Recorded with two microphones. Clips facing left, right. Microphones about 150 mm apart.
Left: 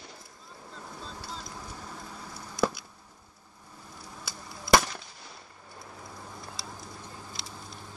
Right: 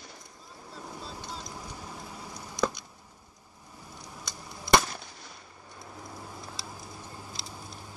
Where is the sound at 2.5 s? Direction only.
5° left (ahead or behind).